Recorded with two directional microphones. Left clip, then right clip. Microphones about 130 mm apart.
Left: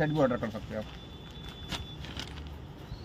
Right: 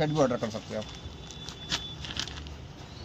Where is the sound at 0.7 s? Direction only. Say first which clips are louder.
Right 1 dB; 50° right (ahead or behind).